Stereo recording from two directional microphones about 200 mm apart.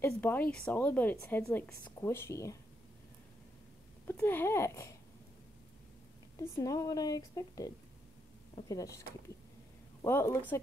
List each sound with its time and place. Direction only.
0.0 s speech: 10° left (ahead or behind)
4.1 s speech: 10° left (ahead or behind)
6.5 s speech: 15° left (ahead or behind)
10.0 s speech: 10° left (ahead or behind)